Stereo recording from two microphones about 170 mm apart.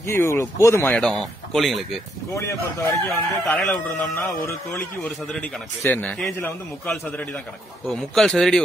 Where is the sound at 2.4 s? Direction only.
15° left (ahead or behind).